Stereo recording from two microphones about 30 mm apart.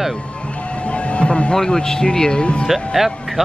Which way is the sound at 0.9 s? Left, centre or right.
Left.